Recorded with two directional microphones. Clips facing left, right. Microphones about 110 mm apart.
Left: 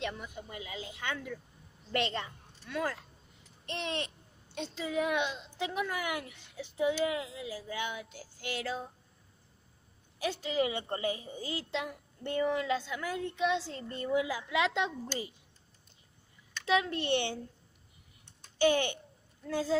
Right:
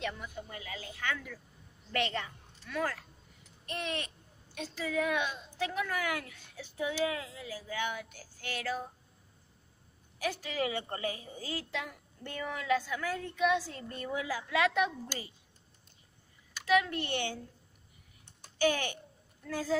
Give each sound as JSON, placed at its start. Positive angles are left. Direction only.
{"t": 0.0, "sound": "a child's voice", "side_deg": 25}
{"t": 10.1, "sound": "a child's voice", "side_deg": 25}
{"t": 16.6, "sound": "a child's voice", "side_deg": 25}
{"t": 18.6, "sound": "a child's voice", "side_deg": 25}